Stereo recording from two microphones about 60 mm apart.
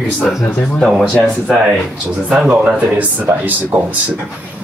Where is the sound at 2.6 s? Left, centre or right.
Right.